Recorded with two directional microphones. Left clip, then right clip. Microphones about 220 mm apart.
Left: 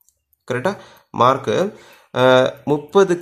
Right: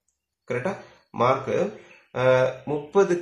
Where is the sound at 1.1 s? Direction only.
45° left (ahead or behind).